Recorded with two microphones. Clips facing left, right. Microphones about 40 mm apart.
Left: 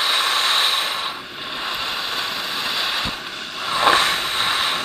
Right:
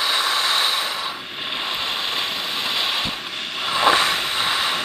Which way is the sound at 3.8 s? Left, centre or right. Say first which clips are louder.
Left 1 dB; left.